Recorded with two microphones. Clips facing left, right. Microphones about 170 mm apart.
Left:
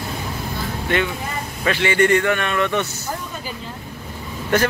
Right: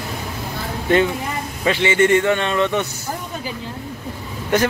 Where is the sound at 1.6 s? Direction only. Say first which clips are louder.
Right 1 dB; 20° right (ahead or behind).